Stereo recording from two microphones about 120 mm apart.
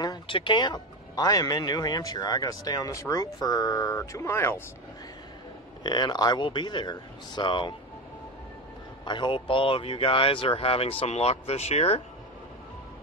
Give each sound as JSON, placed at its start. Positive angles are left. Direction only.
{"t": 0.0, "sound": "speech", "side_deg": 40}
{"t": 5.9, "sound": "speech", "side_deg": 35}
{"t": 9.0, "sound": "speech", "side_deg": 40}